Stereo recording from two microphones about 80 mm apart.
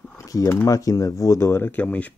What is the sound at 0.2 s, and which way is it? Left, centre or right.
Speech, left.